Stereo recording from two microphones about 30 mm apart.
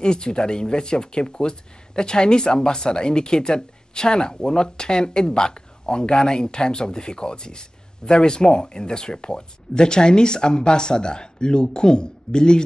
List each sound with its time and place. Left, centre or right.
0.0 s speech: left